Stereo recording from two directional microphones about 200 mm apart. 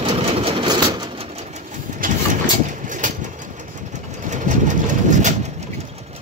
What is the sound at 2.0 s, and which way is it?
Vehicle, 45° right (ahead or behind).